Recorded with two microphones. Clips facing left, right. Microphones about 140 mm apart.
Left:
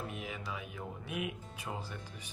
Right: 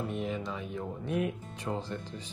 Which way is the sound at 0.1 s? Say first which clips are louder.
Right 8 dB; 5° left (ahead or behind).